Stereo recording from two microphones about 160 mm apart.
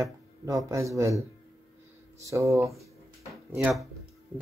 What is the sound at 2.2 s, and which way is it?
Speech, 20° right (ahead or behind).